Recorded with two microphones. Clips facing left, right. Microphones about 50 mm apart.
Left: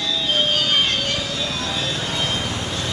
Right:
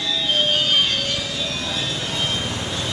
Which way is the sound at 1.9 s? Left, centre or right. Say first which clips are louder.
Left 1 dB; left.